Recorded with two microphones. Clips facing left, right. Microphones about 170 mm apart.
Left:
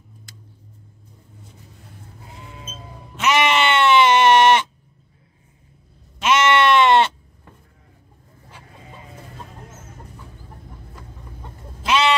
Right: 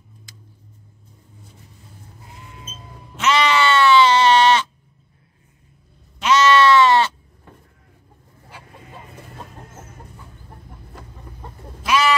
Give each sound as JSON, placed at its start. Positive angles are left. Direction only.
{"t": 3.2, "sound": "sheep", "side_deg": 20}
{"t": 6.2, "sound": "sheep", "side_deg": 25}
{"t": 11.8, "sound": "sheep", "side_deg": 25}